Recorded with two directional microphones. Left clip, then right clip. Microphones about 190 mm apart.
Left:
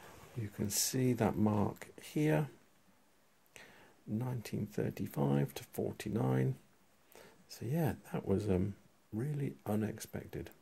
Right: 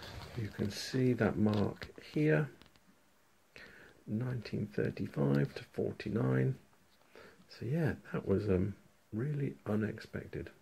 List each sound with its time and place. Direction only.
0.4 s speech: 25° left (ahead or behind)
4.2 s speech: 25° left (ahead or behind)